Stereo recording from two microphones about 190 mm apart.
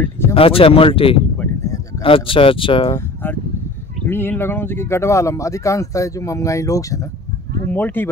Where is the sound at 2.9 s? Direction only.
10° left (ahead or behind).